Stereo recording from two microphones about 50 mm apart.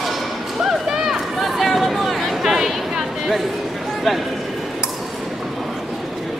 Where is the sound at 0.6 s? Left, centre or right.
Centre.